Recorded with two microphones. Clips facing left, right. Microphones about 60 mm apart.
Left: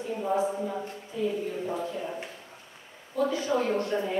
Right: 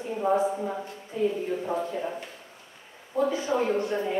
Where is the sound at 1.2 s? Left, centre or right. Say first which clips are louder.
Right 3 dB; right.